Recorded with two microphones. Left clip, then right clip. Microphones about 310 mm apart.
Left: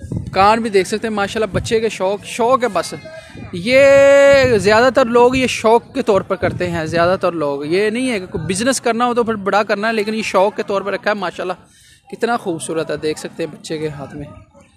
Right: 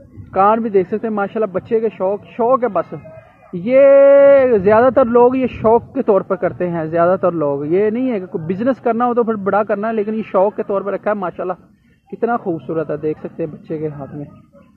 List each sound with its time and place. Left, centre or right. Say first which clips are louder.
0.3 s speech: left 1 dB; centre